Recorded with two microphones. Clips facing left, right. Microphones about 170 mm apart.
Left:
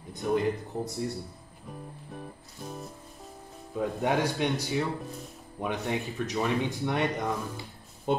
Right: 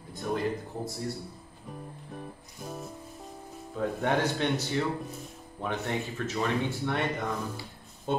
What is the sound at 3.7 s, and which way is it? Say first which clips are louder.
Speech: left 1 dB; 10° left (ahead or behind).